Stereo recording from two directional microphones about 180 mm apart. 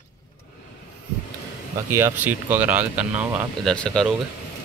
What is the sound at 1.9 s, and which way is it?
Speech, 15° right (ahead or behind).